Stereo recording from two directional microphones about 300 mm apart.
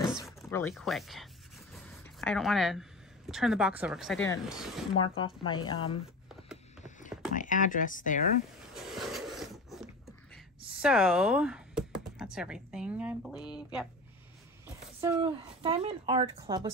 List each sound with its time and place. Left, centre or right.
0.4 s speech: centre
4.9 s speech: centre
7.1 s a sound: centre
7.3 s speech: left
8.7 s a sound: centre
10.7 s speech: centre
15.0 s speech: centre